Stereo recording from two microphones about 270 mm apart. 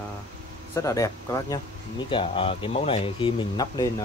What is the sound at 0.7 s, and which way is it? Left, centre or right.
Speech, centre.